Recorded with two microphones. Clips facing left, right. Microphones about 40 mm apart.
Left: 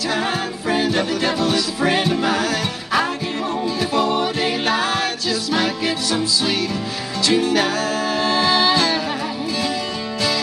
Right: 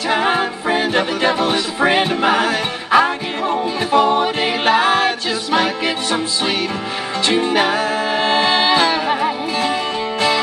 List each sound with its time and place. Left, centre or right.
0.1 s music: right